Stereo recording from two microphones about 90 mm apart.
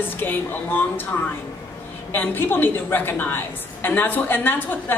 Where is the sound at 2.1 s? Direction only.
25° left (ahead or behind).